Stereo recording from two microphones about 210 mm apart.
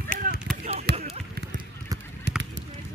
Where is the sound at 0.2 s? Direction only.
40° right (ahead or behind).